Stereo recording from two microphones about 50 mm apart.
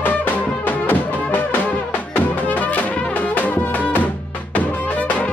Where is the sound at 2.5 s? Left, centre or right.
Left.